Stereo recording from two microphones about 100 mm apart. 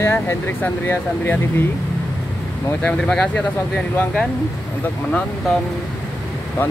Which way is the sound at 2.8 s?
5° left (ahead or behind).